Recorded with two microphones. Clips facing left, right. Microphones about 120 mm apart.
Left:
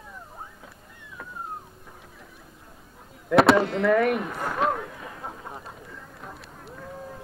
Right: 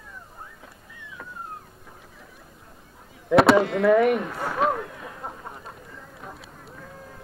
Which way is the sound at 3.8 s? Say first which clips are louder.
Right 3 dB; centre (ahead or behind).